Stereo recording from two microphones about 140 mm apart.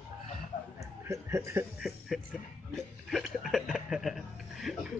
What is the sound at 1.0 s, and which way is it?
Speech, 20° right (ahead or behind).